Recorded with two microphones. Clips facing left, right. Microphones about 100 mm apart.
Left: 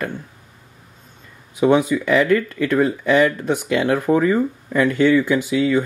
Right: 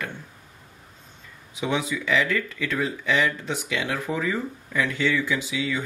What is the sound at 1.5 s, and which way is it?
Speech, 50° left (ahead or behind).